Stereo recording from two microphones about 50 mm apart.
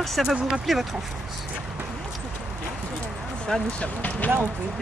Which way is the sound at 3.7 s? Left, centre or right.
Left.